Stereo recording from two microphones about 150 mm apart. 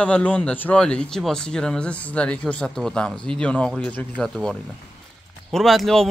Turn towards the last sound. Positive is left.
turn(degrees=0)  # may be behind; listen again after turning